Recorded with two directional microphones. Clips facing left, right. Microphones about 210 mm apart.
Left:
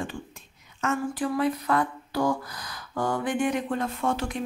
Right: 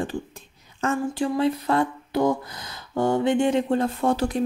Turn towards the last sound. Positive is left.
turn(degrees=-35)  # may be behind; listen again after turning